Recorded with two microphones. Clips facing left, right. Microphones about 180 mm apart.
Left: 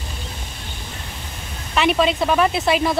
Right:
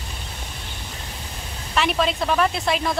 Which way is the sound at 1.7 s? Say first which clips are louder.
Left 4 dB; centre (ahead or behind).